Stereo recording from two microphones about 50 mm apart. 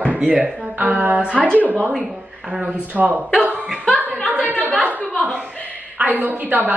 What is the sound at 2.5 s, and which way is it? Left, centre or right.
Speech, right.